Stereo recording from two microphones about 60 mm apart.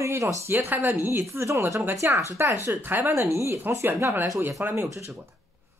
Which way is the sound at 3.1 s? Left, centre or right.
Right.